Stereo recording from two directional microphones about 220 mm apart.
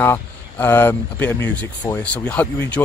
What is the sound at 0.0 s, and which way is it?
Speech, 10° left (ahead or behind).